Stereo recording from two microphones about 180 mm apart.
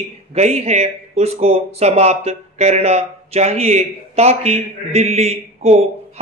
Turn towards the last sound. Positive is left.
turn(degrees=-35)  # may be behind; listen again after turning